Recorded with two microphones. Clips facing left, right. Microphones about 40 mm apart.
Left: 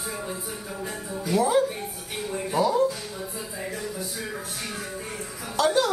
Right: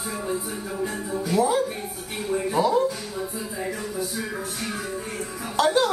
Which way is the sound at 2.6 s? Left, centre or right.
Right.